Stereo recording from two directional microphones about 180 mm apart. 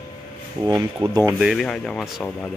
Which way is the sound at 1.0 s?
30° right (ahead or behind).